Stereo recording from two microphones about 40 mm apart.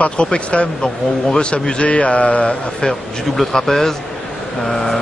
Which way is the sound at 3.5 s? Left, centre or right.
Centre.